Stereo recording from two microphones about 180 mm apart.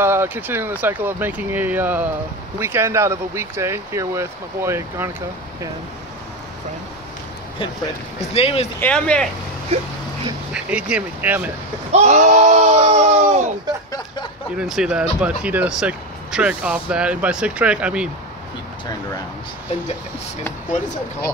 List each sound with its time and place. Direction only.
0.0 s speech: 15° right (ahead or behind)
8.2 s speech: 35° left (ahead or behind)
8.7 s speech: 10° left (ahead or behind)
9.7 s speech: 35° right (ahead or behind)
10.5 s speech: 5° right (ahead or behind)
11.9 s speech: 40° right (ahead or behind)
14.6 s speech: 5° right (ahead or behind)